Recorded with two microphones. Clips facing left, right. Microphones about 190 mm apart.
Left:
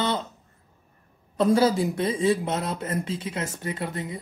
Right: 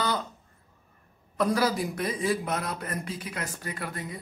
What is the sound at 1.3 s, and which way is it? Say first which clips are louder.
Speech: left 5 dB; 25° left (ahead or behind).